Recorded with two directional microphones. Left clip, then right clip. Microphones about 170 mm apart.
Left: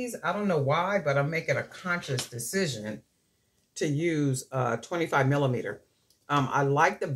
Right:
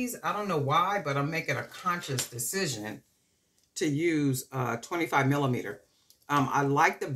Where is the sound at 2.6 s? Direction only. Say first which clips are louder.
Left 1 dB; 35° right (ahead or behind).